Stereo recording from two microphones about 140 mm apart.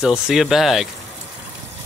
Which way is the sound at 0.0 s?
5° right (ahead or behind).